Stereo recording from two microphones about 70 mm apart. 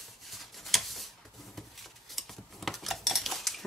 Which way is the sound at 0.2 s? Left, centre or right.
Centre.